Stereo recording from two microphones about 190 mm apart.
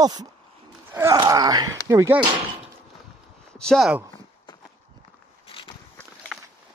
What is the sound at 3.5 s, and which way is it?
Speech, 5° left (ahead or behind).